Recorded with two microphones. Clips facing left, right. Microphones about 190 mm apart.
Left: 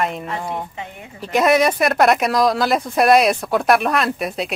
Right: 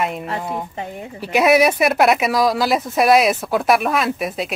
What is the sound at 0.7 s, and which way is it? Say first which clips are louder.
Speech: right 5 dB; 40° right (ahead or behind).